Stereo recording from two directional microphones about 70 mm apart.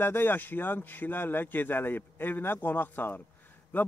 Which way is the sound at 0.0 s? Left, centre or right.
Left.